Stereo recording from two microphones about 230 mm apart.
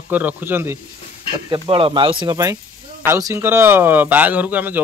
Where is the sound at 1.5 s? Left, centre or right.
Right.